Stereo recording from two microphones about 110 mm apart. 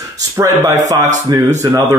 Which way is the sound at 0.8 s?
90° right.